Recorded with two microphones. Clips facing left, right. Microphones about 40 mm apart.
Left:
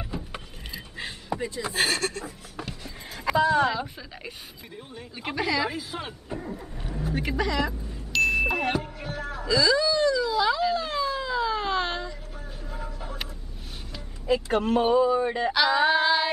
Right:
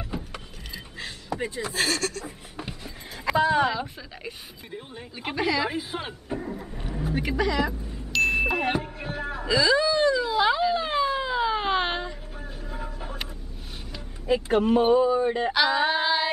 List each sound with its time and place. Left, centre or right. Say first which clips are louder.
0.9 s a sound: left 1 dB; centre
1.6 s speech: left 1 dB; left
2.5 s a sound: even; centre
3.6 s speech: even; centre
5.7 s speech: right 2 dB; right
6.2 s speech: right 3 dB; centre
7.1 s music: right 2 dB; centre; by 10.6 s right
10.6 s a sound: right 2 dB; right
12.6 s vehicle: right 1 dB; right
14.5 s speech: right 3 dB; centre
15.3 s female singing: even; centre